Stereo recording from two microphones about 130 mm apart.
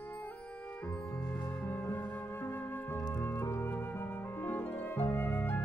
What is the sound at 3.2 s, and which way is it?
Music, 20° left (ahead or behind).